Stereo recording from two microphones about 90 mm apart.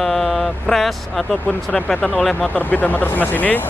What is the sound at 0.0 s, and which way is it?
Vehicle, centre (ahead or behind).